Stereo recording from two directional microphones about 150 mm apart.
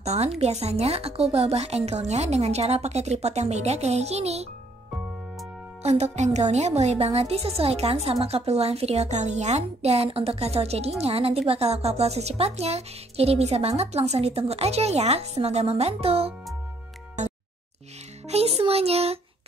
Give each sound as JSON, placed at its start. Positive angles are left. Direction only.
{"t": 0.0, "sound": "a woman's voice", "side_deg": -45}
{"t": 5.8, "sound": "a woman's voice", "side_deg": -45}
{"t": 18.3, "sound": "a woman's voice", "side_deg": -45}